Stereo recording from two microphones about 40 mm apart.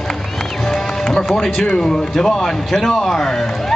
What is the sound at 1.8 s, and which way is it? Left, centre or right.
A man's voice, centre.